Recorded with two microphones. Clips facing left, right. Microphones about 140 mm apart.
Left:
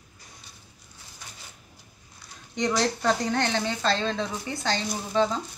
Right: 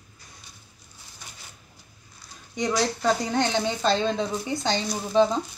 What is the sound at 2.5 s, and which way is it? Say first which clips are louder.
Speech: even; 5° right (ahead or behind).